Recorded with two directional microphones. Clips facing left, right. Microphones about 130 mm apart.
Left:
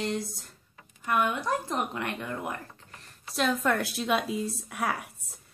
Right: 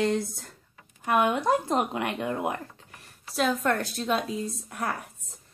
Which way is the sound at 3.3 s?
Centre (ahead or behind).